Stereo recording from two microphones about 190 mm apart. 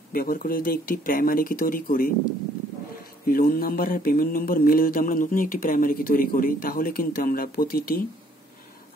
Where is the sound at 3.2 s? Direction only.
50° left (ahead or behind).